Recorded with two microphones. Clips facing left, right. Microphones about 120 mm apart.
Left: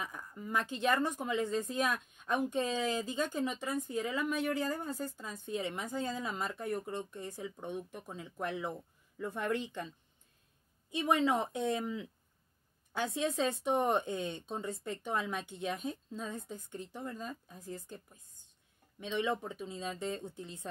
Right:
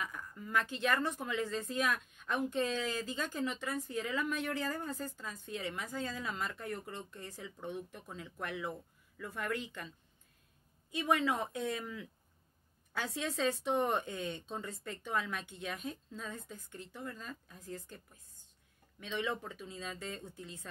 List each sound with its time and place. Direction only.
0.0 s a woman's voice: 25° left (ahead or behind)
10.9 s a woman's voice: 25° left (ahead or behind)